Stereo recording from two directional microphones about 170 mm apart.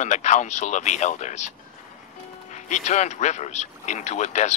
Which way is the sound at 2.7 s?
45° left (ahead or behind).